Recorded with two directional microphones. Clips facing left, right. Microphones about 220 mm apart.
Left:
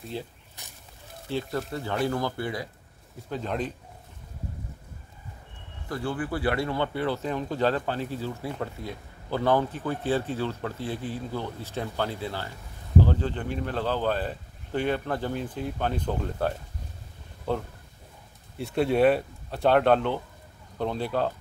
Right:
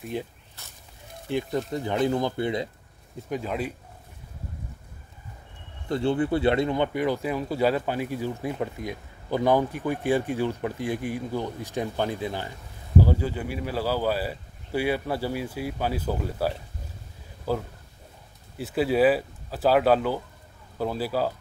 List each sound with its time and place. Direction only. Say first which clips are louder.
0.0 s speech: right 4 dB; 15° right (ahead or behind)
0.6 s a sound: even; 15° left (ahead or behind)
1.3 s speech: right 3 dB; 15° right (ahead or behind)
3.3 s speech: right 1 dB; 10° right (ahead or behind)
5.9 s speech: right 6 dB; 25° right (ahead or behind); by 21.3 s 5° right (ahead or behind)